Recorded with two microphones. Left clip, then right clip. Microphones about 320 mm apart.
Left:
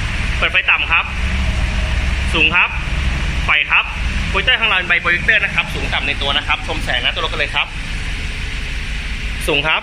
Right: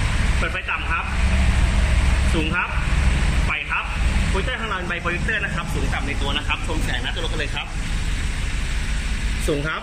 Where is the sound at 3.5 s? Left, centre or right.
Centre.